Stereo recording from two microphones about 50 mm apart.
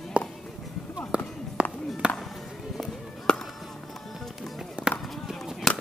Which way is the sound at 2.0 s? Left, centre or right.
Right.